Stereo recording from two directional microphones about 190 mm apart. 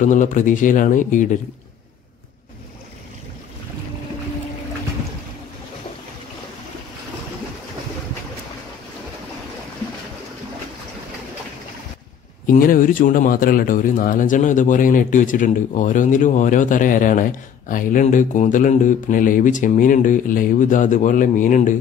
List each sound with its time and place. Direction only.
0.0 s speech: 40° left (ahead or behind)
12.4 s speech: 45° left (ahead or behind)